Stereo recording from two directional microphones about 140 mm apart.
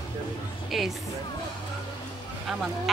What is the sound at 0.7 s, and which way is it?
Speech, centre (ahead or behind).